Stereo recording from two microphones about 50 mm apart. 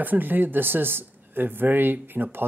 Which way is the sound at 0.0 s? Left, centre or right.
Right.